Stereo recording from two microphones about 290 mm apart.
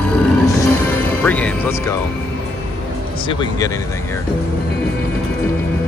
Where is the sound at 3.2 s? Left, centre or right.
Centre.